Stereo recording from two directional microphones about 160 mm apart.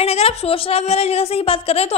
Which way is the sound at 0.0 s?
40° left (ahead or behind).